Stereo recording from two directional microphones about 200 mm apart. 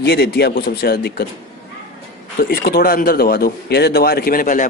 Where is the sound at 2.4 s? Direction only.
50° left (ahead or behind).